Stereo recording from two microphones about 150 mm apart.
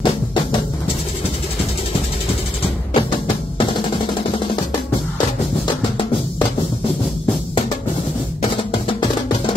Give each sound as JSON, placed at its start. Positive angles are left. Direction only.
{"t": 0.0, "sound": "music", "side_deg": 30}
{"t": 8.4, "sound": "music", "side_deg": 35}